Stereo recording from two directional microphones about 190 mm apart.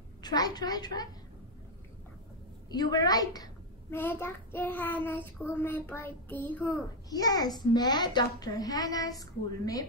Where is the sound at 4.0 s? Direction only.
10° left (ahead or behind).